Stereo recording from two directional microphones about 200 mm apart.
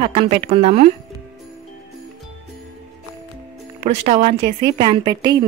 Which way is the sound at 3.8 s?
35° right (ahead or behind).